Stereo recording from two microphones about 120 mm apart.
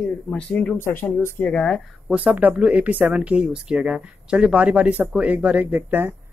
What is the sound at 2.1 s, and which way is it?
Speech, 10° right (ahead or behind).